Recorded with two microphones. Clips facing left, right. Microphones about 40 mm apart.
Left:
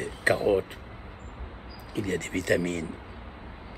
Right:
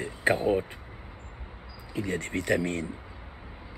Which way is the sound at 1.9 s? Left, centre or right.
Right.